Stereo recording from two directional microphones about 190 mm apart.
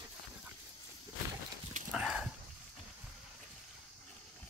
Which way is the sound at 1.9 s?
5° right (ahead or behind).